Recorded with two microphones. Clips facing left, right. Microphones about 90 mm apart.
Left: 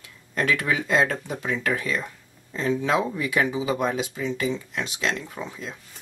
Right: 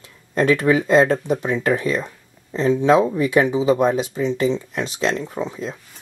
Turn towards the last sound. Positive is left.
turn(degrees=-25)  # may be behind; listen again after turning